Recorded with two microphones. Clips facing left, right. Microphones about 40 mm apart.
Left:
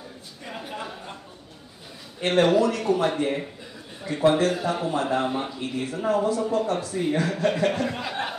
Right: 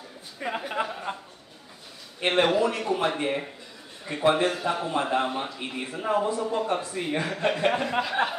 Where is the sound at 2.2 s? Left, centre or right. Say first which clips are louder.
Left 3 dB; centre.